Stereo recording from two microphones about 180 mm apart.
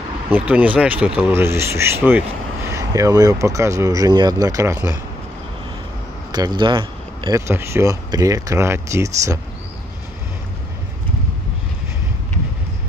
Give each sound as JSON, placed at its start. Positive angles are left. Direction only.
{"t": 0.3, "sound": "speech", "side_deg": -10}
{"t": 6.3, "sound": "speech", "side_deg": -25}